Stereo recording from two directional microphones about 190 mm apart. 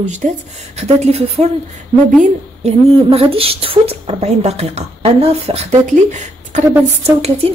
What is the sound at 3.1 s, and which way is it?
Speech, 30° right (ahead or behind).